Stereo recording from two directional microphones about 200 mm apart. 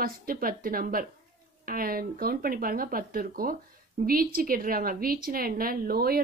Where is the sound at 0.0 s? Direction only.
45° right (ahead or behind).